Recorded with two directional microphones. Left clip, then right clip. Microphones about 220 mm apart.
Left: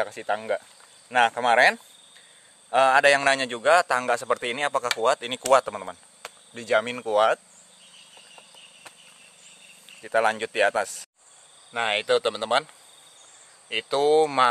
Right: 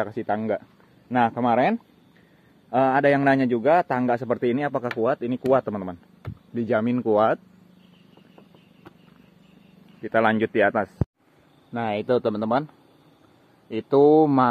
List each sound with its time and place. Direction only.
0.1 s a man's voice: 5° right (ahead or behind)
10.0 s speech: 5° left (ahead or behind)
11.7 s a man's voice: centre (ahead or behind)
13.7 s a man's voice: centre (ahead or behind)